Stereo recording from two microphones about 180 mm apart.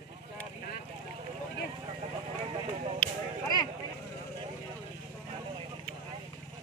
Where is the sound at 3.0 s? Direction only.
5° left (ahead or behind).